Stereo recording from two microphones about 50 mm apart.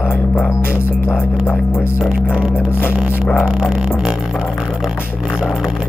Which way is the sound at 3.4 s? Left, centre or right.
Centre.